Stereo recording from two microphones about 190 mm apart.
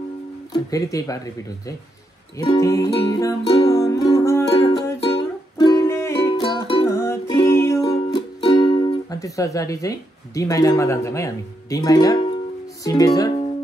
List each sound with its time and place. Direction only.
0.5 s speech: 20° left (ahead or behind)
2.3 s music: 15° left (ahead or behind)
8.4 s speech: 25° left (ahead or behind)